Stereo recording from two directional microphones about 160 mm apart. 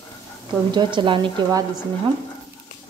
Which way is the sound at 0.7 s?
30° right (ahead or behind).